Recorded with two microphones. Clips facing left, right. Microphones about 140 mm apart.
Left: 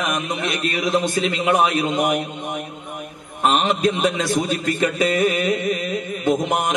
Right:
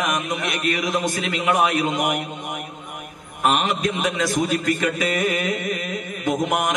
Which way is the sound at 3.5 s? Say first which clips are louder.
Left 3 dB; 30° left (ahead or behind).